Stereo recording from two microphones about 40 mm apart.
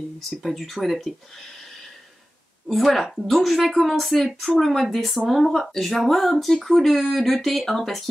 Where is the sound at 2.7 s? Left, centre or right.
Centre.